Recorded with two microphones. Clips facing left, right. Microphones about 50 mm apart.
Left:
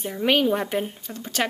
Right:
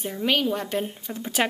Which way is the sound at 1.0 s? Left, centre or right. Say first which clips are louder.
Right 1 dB; centre.